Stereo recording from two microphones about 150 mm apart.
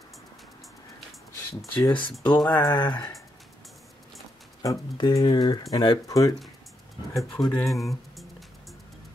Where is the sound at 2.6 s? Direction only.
25° left (ahead or behind).